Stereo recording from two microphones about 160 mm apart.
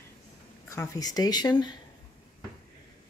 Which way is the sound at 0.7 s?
20° left (ahead or behind).